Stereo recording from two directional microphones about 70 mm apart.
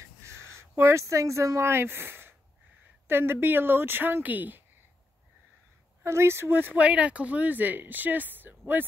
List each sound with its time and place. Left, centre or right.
0.6 s speech: right
6.0 s speech: right